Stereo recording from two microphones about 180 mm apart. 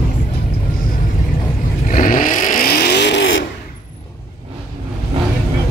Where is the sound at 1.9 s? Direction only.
45° left (ahead or behind); by 3.4 s 85° left.